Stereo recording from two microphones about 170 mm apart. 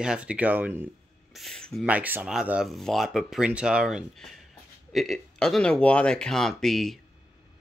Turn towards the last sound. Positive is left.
turn(degrees=0)  # may be behind; listen again after turning